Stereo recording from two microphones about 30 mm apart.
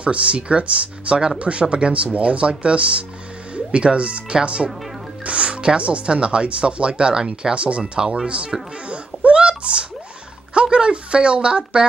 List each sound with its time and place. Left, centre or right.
0.0 s speech: right
7.5 s speech: right
7.8 s speech: right
8.5 s speech: centre
8.8 s a sound: right
10.5 s a woman's voice: right